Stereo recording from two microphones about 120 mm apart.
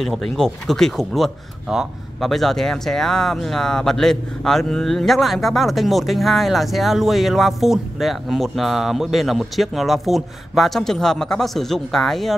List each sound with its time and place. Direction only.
0.0 s speech: centre (ahead or behind)